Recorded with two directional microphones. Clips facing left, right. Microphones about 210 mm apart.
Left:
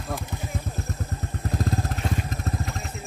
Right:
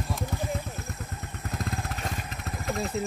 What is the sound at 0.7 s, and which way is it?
Vehicle, 35° left (ahead or behind).